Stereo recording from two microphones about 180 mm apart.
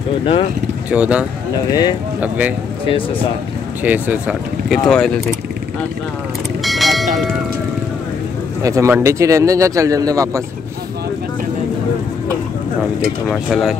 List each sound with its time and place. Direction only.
0.2 s speech: 30° left (ahead or behind)
0.8 s a man's voice: 5° right (ahead or behind)
1.7 s speech: 25° left (ahead or behind)
2.1 s speech: 10° right (ahead or behind)
3.8 s speech: 10° right (ahead or behind)
6.6 s bell: centre (ahead or behind)
8.6 s a man's voice: 15° right (ahead or behind)
13.3 s speech: centre (ahead or behind)